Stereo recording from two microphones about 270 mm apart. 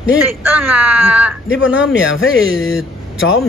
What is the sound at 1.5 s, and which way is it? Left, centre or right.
Speech, left.